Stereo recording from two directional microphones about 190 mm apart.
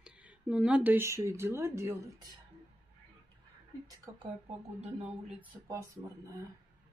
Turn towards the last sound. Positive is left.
turn(degrees=-15)  # may be behind; listen again after turning